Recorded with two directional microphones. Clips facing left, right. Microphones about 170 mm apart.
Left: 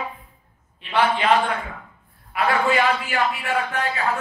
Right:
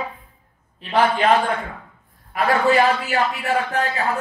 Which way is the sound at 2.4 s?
35° right (ahead or behind).